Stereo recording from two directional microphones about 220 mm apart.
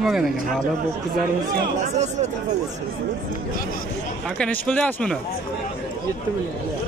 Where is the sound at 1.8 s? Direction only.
30° right (ahead or behind).